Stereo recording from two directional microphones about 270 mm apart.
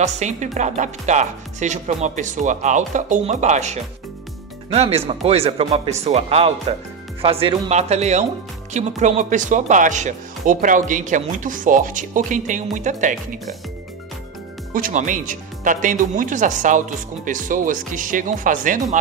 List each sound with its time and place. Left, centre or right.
0.0 s speech: right
14.7 s speech: right